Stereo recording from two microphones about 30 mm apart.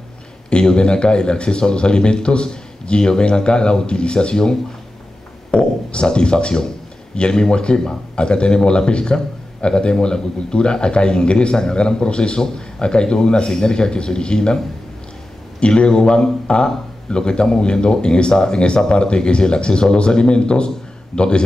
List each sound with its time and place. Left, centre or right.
0.5 s speech: left
5.5 s a man's voice: left
15.6 s speech: left